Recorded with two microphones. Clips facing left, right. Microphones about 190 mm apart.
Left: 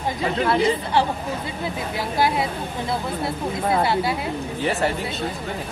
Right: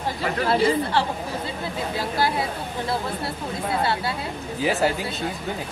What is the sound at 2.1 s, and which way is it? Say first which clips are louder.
Speech: left 3 dB; 20° left (ahead or behind).